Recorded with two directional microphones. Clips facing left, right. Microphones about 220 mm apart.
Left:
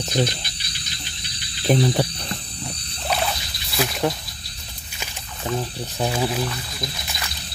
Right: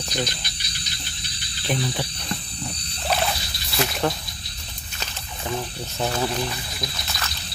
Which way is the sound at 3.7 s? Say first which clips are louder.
Left 1 dB; centre (ahead or behind).